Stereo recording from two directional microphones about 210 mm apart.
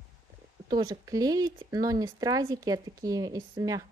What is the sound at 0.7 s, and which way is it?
Speech, 20° right (ahead or behind).